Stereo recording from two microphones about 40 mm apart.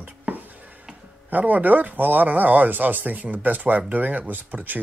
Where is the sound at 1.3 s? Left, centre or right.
Right.